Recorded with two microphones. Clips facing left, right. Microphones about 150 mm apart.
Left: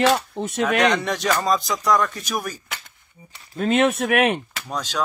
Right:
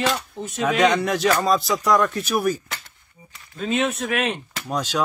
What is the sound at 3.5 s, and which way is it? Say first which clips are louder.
Speech: left 4 dB; 60° left (ahead or behind).